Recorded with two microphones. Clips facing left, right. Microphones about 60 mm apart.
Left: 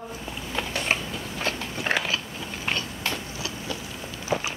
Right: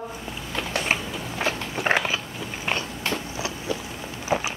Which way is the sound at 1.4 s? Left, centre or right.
Right.